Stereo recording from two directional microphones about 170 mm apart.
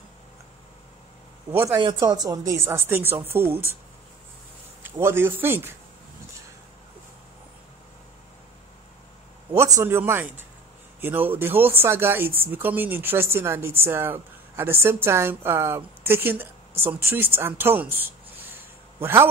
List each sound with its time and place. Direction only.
1.5 s speech: 15° right (ahead or behind)
1.8 s a woman's voice: 25° right (ahead or behind)
4.8 s speech: 15° right (ahead or behind)
9.5 s speech: 15° right (ahead or behind)